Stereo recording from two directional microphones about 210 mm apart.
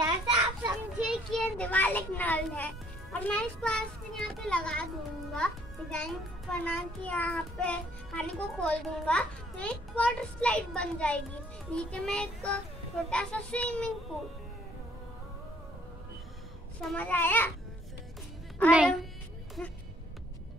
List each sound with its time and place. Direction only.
0.0 s children playing: 15° right (ahead or behind)
1.0 s a child's voice: centre (ahead or behind)
16.8 s a child's voice: 5° left (ahead or behind)
18.7 s a child's voice: 5° right (ahead or behind)
19.6 s a child's voice: 5° left (ahead or behind)